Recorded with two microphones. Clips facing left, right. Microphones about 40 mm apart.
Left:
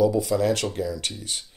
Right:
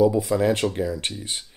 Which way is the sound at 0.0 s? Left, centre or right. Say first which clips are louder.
Right 2 dB; right.